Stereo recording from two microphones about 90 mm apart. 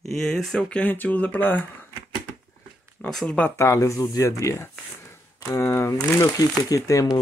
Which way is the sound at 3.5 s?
35° left (ahead or behind).